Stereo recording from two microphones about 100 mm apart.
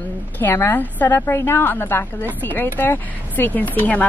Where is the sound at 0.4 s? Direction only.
25° left (ahead or behind).